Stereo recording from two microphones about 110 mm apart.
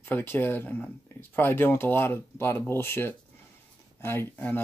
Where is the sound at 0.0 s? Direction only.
20° left (ahead or behind).